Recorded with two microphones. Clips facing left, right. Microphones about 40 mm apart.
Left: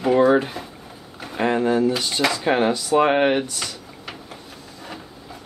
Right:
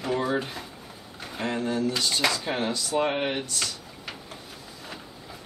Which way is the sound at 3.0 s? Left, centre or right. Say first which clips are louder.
Left 9 dB; left.